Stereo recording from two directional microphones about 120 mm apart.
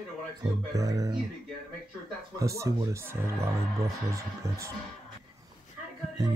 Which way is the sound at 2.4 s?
25° right (ahead or behind).